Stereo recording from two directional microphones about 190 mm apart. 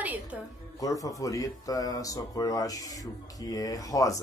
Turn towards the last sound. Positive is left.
turn(degrees=15)  # may be behind; listen again after turning